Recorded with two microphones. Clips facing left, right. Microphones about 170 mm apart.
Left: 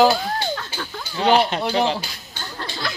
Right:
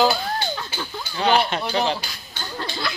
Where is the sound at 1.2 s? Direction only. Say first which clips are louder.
Left 2 dB; 35° left (ahead or behind).